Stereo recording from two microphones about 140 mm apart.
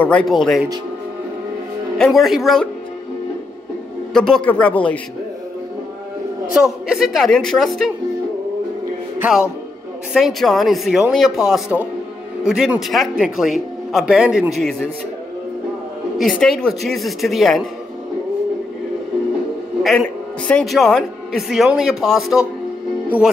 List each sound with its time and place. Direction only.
0.0 s speech: 5° left (ahead or behind)
2.0 s speech: centre (ahead or behind)
4.1 s speech: 5° left (ahead or behind)
6.5 s speech: 5° right (ahead or behind)
10.1 s speech: centre (ahead or behind)
16.2 s speech: 5° left (ahead or behind)
19.8 s a woman's voice: centre (ahead or behind)